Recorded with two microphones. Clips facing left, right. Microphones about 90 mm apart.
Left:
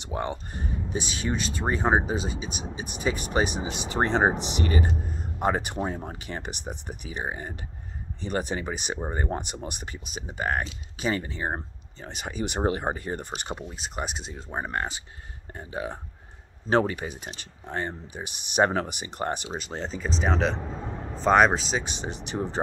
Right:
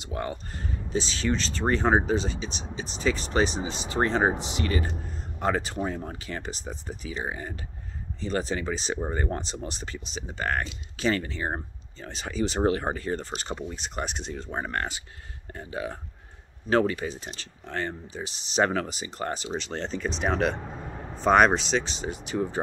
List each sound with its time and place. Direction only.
0.1 s speech: 25° left (ahead or behind)
8.2 s speech: 20° left (ahead or behind)
13.7 s speech: 5° left (ahead or behind); by 17.1 s 25° left (ahead or behind)
17.1 s speech: 15° left (ahead or behind)
19.7 s speech: 5° left (ahead or behind)
21.8 s speech: 25° left (ahead or behind)